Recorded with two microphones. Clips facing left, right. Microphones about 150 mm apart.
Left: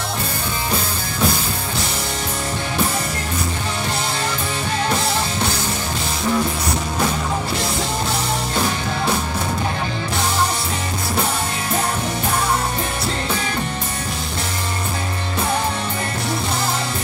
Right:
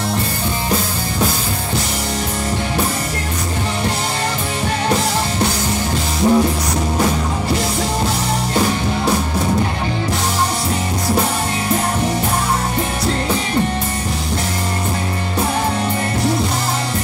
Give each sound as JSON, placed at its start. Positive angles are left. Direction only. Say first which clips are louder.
{"t": 6.2, "sound": "music", "louder": "right 7 dB", "side_deg": -30}